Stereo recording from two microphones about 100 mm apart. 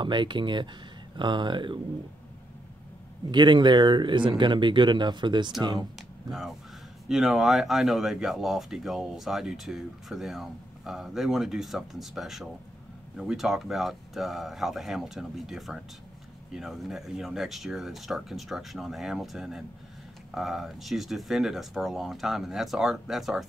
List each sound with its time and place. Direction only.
0.0 s speech: 50° right (ahead or behind)
3.3 s speech: 50° right (ahead or behind)
7.1 s speech: 5° right (ahead or behind)